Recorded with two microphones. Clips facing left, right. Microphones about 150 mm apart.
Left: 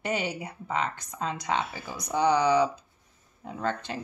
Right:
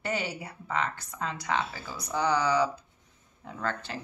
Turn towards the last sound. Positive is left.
turn(degrees=20)  # may be behind; listen again after turning